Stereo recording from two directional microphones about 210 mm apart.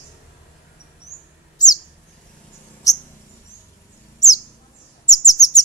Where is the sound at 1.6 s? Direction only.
20° left (ahead or behind).